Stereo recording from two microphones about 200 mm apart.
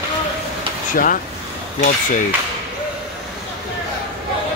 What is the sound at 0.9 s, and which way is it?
Speech, 45° left (ahead or behind).